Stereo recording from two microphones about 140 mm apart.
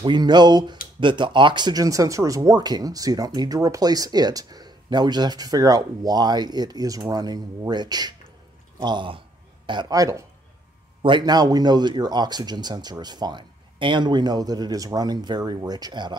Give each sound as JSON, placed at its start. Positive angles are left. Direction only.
{"t": 0.0, "sound": "speech", "side_deg": -30}
{"t": 11.0, "sound": "speech", "side_deg": -35}